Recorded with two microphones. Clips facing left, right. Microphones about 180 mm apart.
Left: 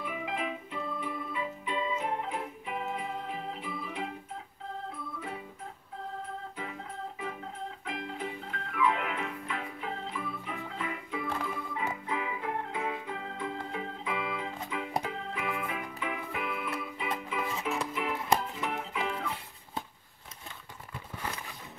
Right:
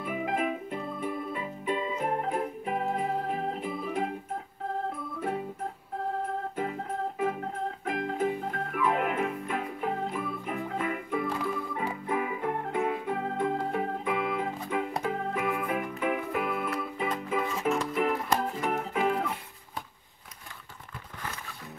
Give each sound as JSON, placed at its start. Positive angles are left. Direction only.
{"t": 0.0, "sound": "organ", "side_deg": -50}
{"t": 6.5, "sound": "organ", "side_deg": -50}
{"t": 7.8, "sound": "music", "side_deg": -45}